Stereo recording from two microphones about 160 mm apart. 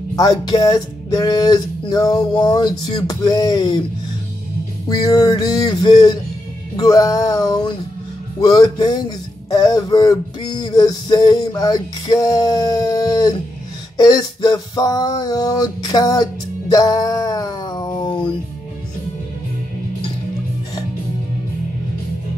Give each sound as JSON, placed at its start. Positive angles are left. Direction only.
{"t": 0.1, "sound": "male singing", "side_deg": 25}
{"t": 4.8, "sound": "male singing", "side_deg": 25}
{"t": 13.9, "sound": "a sound", "side_deg": 25}